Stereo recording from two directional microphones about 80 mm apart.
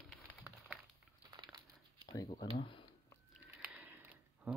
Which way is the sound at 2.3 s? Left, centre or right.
Left.